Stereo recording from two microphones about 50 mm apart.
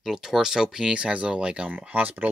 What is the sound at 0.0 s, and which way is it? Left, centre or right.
Speech, centre.